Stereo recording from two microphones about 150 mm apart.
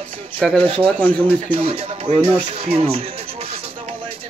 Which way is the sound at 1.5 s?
40° right (ahead or behind).